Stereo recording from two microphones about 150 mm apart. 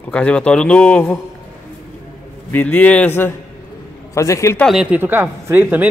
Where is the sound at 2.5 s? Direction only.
10° left (ahead or behind).